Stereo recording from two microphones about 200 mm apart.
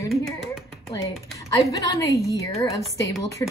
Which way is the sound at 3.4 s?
15° left (ahead or behind).